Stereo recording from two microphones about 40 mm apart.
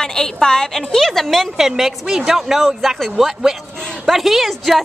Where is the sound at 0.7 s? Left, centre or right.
Centre.